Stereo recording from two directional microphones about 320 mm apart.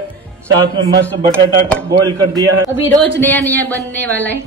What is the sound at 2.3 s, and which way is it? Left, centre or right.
Speech, centre.